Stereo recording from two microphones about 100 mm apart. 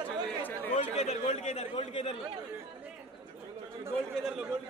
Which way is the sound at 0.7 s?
90° left.